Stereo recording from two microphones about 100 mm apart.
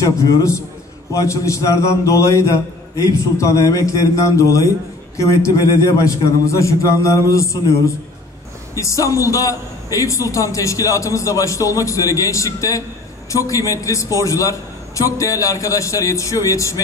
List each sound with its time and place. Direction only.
0.0 s a man's voice: 30° left (ahead or behind)
8.7 s a man's voice: 30° left (ahead or behind)